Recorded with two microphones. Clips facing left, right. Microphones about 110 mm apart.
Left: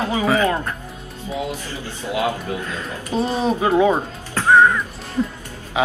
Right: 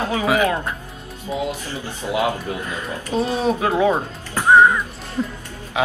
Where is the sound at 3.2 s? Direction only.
Centre (ahead or behind).